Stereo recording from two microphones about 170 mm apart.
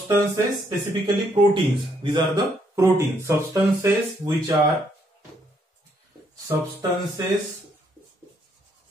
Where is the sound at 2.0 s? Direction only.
25° right (ahead or behind).